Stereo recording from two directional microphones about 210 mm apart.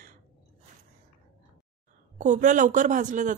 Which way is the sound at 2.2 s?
35° right (ahead or behind).